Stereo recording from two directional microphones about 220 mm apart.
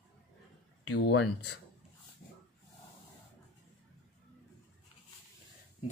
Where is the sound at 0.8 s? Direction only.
55° left (ahead or behind).